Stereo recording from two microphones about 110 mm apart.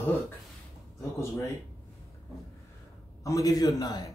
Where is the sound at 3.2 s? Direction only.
30° left (ahead or behind).